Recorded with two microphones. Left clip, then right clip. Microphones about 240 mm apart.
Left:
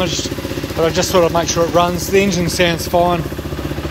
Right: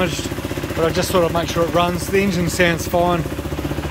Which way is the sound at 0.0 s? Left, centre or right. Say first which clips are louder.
Left 2 dB; centre.